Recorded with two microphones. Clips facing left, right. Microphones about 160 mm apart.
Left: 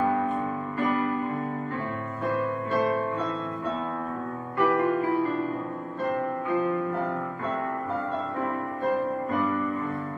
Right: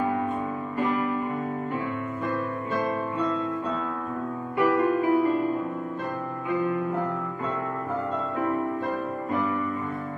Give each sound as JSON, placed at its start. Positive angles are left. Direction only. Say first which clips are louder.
{"t": 4.6, "sound": "music", "louder": "right 1 dB", "side_deg": -15}